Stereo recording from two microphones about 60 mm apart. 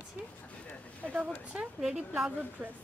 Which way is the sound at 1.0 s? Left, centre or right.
Centre.